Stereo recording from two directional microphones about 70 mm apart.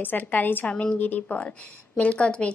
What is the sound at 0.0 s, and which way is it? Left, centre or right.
A woman's voice, left.